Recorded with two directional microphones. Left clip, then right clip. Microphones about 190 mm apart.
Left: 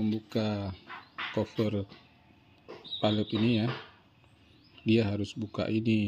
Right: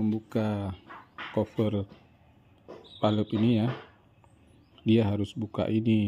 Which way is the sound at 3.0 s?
10° right (ahead or behind).